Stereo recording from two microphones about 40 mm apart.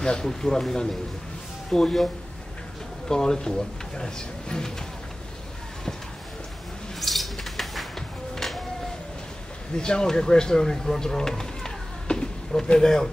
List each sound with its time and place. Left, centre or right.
0.2 s speech: centre
3.1 s speech: centre
7.0 s music: centre
9.8 s speech: centre